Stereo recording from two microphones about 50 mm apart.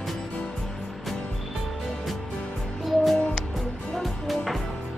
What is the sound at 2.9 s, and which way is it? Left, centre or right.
Music, centre.